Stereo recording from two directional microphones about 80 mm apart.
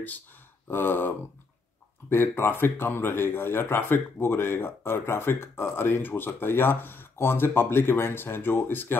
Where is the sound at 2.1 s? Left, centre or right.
Left.